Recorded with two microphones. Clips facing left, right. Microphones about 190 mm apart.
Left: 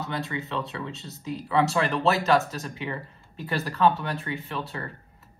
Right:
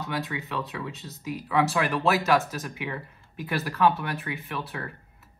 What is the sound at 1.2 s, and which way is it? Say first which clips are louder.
Speech: left 1 dB; 10° right (ahead or behind).